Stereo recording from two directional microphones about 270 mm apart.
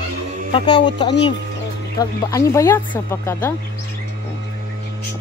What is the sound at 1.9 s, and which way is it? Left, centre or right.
Speech, centre.